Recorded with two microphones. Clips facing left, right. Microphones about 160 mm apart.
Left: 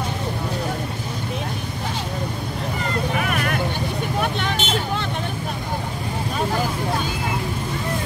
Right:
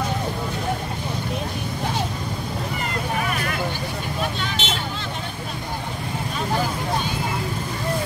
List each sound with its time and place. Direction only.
3.2 s vehicle: 55° left (ahead or behind)